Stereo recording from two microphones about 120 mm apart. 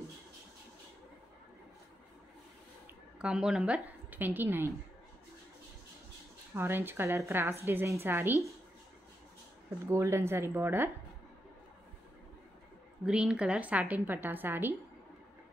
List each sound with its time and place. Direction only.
3.2 s a woman's voice: 5° right (ahead or behind)
6.5 s a woman's voice: 15° right (ahead or behind)
9.8 s a woman's voice: 20° right (ahead or behind)
13.0 s a woman's voice: 10° right (ahead or behind)